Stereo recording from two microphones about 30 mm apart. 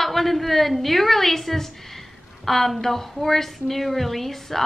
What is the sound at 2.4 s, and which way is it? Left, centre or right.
A woman's voice, centre.